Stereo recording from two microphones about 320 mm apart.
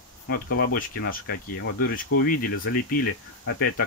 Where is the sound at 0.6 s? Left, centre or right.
Left.